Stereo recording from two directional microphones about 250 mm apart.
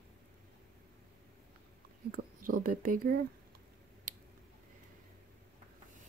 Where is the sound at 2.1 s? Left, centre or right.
Right.